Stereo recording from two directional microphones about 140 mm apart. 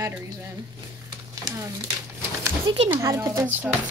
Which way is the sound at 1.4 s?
25° right (ahead or behind).